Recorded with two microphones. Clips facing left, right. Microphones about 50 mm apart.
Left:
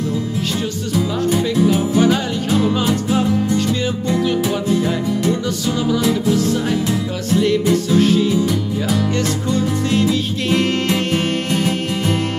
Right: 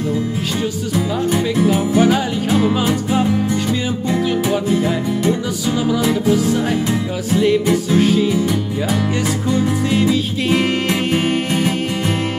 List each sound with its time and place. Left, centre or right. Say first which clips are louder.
1.7 s music: right 2 dB; centre
7.3 s music: right 1 dB; centre
9.5 s music: right 2 dB; centre